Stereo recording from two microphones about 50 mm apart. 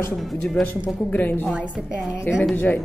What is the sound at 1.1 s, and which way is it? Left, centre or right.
Speech, left.